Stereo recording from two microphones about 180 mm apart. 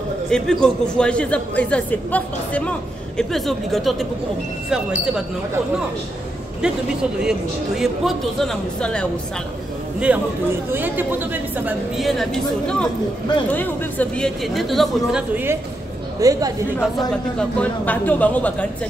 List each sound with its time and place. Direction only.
0.3 s a man's voice: 5° left (ahead or behind)
6.6 s speech: 5° right (ahead or behind)
9.9 s a man's voice: 10° right (ahead or behind)
12.1 s speech: centre (ahead or behind)
16.2 s speech: 20° right (ahead or behind)
17.4 s a man's voice: 5° left (ahead or behind)